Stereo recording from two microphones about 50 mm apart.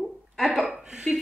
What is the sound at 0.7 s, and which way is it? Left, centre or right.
Speech, centre.